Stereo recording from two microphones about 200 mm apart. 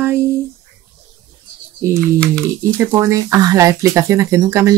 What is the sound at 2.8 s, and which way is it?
Speech, 15° right (ahead or behind).